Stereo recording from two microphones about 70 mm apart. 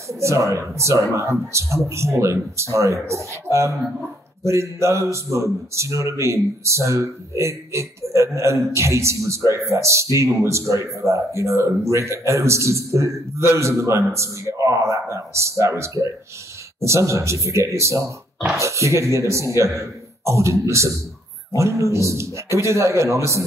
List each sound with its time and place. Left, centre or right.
0.1 s speech: right